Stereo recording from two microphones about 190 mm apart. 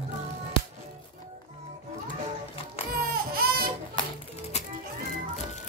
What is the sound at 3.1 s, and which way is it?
Baby cry, 50° right (ahead or behind).